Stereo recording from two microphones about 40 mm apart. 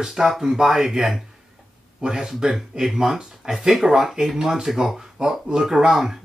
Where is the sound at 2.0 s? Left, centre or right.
Centre.